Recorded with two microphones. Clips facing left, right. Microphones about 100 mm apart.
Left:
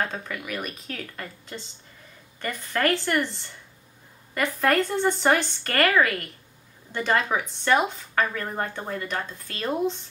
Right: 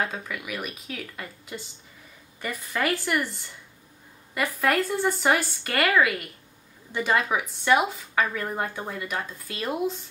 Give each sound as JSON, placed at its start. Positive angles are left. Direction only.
{"t": 0.0, "sound": "a woman's voice", "side_deg": -5}